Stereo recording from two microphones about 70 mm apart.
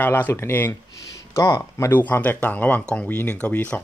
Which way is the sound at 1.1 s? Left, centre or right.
Left.